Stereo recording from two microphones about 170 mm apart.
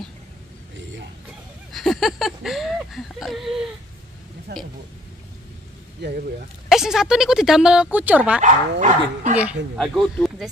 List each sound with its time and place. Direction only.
1.7 s whimper: centre (ahead or behind)
4.5 s speech: 75° right (ahead or behind)
6.7 s speech: 5° right (ahead or behind)
8.4 s speech: 45° right (ahead or behind)
9.3 s speech: 10° right (ahead or behind)